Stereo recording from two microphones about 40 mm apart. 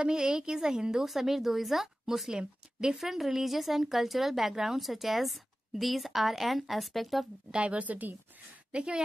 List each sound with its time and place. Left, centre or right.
0.0 s speech: centre
1.0 s speech: centre
7.5 s speech: right
8.7 s a woman's voice: right